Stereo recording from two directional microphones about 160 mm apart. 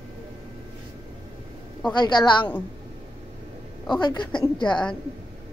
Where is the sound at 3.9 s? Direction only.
30° left (ahead or behind).